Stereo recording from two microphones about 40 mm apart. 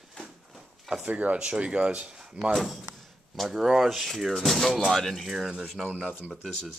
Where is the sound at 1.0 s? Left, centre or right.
Right.